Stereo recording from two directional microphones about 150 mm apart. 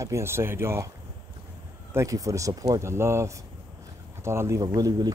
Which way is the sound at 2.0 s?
20° right (ahead or behind).